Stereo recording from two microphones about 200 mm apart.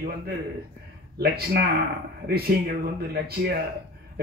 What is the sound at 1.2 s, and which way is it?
Speech, 50° right (ahead or behind).